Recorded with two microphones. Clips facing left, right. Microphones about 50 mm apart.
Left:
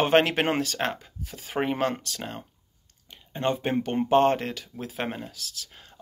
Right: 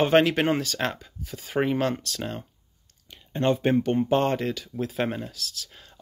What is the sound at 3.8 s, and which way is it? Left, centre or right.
Speech, left.